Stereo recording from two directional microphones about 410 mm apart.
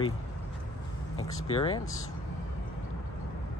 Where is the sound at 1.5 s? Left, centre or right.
Centre.